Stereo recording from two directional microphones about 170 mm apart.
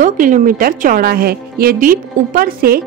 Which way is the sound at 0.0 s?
50° right (ahead or behind).